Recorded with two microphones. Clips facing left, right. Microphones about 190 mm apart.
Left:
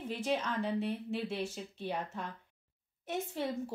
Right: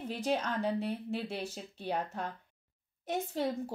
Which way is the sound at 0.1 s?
40° right (ahead or behind).